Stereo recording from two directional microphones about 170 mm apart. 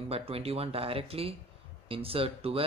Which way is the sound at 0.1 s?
35° right (ahead or behind).